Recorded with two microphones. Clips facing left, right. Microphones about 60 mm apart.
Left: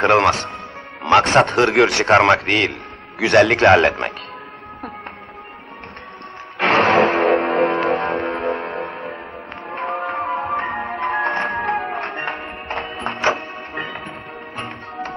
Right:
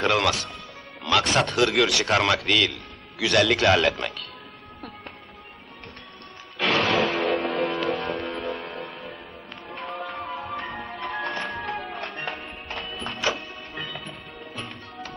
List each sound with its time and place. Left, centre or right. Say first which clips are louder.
0.0 s a man's voice: left 8 dB; left
6.6 s music: left 8 dB; left